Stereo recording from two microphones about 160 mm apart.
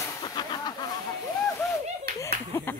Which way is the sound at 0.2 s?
25° left (ahead or behind).